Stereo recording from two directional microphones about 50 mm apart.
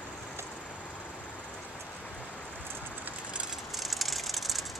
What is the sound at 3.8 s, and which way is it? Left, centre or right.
Vehicle, centre.